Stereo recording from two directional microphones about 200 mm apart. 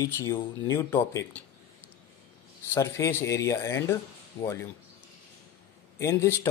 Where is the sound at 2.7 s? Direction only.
15° left (ahead or behind).